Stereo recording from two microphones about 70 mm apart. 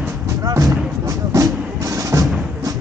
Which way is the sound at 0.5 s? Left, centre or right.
Right.